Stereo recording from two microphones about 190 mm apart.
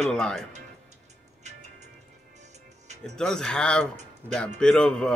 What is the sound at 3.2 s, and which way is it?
Speech, 5° left (ahead or behind).